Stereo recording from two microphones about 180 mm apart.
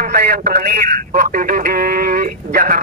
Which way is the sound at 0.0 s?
60° right (ahead or behind).